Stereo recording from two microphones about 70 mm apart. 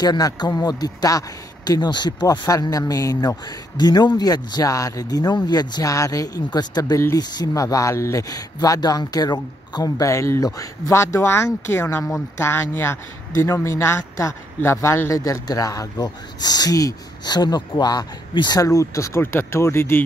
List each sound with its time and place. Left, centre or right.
0.0 s speech: left
1.7 s speech: left
4.2 s speech: left
5.9 s speech: left
7.2 s speech: left
7.5 s speech: left
10.0 s speech: left